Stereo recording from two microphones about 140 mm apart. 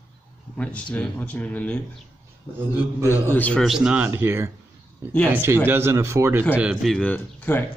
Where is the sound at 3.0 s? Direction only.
15° left (ahead or behind).